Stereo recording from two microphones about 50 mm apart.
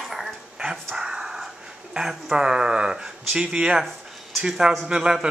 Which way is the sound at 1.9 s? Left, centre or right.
Centre.